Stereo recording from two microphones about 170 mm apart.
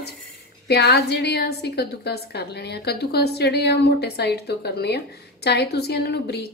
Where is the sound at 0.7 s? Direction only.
75° left (ahead or behind).